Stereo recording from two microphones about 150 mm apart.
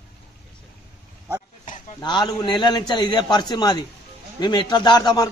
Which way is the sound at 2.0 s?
30° left (ahead or behind).